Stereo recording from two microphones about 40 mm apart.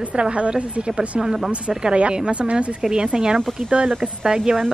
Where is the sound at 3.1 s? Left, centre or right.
Centre.